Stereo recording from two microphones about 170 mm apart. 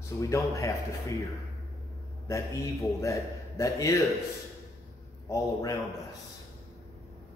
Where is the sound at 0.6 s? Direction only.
20° left (ahead or behind).